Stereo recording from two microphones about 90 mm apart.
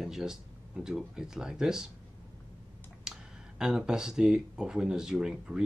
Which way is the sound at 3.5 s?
10° right (ahead or behind).